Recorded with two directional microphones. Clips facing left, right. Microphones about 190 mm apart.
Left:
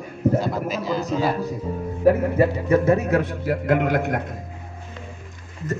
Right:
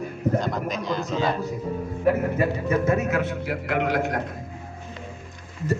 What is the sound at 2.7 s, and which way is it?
A man's voice, 30° left (ahead or behind).